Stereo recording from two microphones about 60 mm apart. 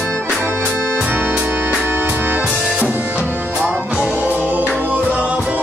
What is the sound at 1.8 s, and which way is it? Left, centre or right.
Music, right.